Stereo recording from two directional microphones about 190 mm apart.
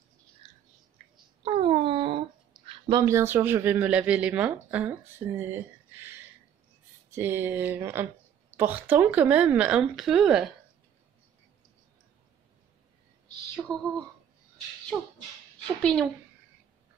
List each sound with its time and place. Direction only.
1.1 s a sound: 30° right (ahead or behind); by 4.9 s 5° right (ahead or behind)
5.2 s speech: 10° right (ahead or behind)
7.1 s speech: 10° right (ahead or behind)
13.7 s speech: 20° right (ahead or behind)
15.6 s a woman's voice: 5° left (ahead or behind)